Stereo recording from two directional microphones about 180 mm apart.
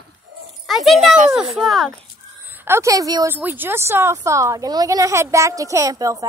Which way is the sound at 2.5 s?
15° right (ahead or behind).